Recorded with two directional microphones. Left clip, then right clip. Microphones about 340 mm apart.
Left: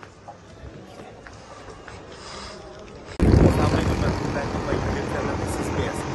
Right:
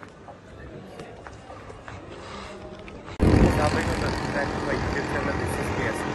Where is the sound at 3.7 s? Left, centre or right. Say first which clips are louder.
Left 1 dB; right.